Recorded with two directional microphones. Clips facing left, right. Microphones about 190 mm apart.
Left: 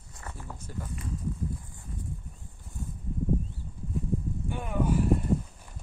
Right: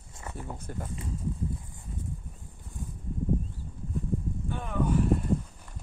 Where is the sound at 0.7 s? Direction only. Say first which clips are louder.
Even; 55° right (ahead or behind).